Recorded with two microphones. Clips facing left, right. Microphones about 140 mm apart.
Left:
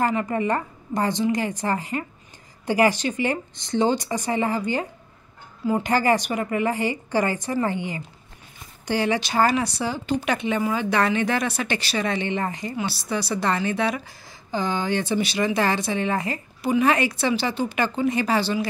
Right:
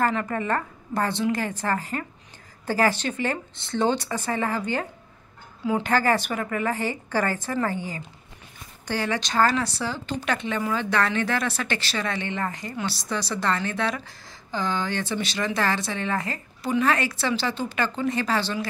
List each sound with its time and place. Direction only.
0.0 s speech: 15° left (ahead or behind)
5.7 s speech: 10° left (ahead or behind)
8.8 s speech: 15° left (ahead or behind)